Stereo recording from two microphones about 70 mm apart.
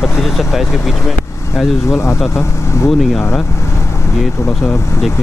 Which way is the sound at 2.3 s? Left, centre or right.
Left.